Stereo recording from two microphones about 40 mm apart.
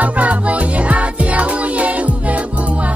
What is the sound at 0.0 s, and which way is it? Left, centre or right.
Music, right.